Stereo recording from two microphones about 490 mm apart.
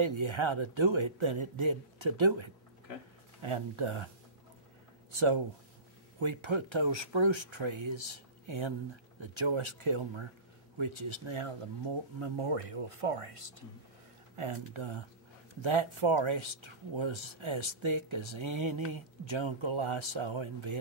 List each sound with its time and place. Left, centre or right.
0.0 s speech: right
3.4 s speech: right
5.1 s speech: right